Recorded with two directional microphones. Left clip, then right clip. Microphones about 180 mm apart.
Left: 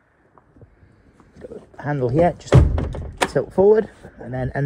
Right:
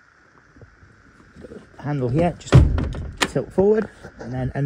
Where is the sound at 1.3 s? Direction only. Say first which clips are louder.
Left 4 dB; 5° right (ahead or behind).